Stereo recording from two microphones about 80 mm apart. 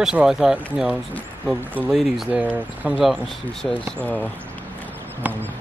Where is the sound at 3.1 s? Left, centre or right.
Centre.